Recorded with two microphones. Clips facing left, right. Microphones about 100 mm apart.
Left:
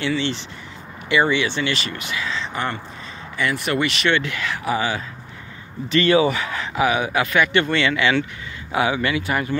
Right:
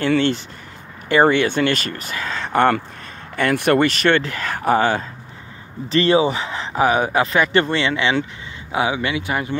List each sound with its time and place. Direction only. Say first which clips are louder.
0.0 s speech: right 5 dB; 50° right (ahead or behind)
5.9 s speech: right 1 dB; 30° right (ahead or behind)